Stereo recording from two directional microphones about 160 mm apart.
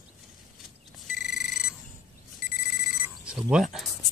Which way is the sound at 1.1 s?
Centre (ahead or behind).